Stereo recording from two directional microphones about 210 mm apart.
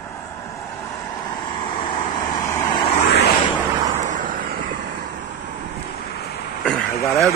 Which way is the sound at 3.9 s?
35° right (ahead or behind).